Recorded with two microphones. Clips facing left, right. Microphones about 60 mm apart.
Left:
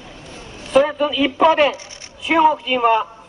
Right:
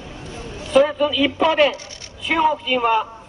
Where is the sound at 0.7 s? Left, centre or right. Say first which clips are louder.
Even; centre.